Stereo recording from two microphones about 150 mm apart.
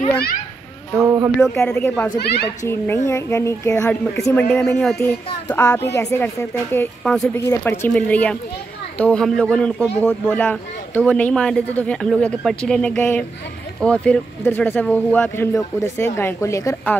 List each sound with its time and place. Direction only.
0.9 s a sound: 20° right (ahead or behind)
1.7 s speech: 10° left (ahead or behind)
2.1 s speech: 90° left
2.6 s speech: 15° left (ahead or behind)
5.0 s a woman's voice: 20° left (ahead or behind)